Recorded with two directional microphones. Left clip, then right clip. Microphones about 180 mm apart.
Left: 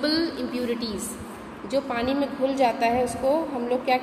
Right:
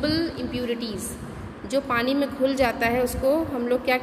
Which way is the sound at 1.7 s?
35° right (ahead or behind).